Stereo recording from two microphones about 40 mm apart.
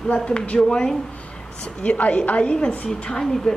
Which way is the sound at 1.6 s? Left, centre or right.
Left.